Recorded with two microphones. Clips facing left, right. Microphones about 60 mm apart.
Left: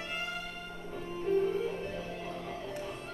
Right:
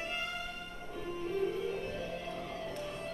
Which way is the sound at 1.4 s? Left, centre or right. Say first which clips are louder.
Left 2 dB; left.